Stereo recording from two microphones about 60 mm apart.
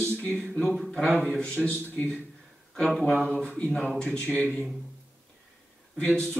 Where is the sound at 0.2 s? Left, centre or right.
Centre.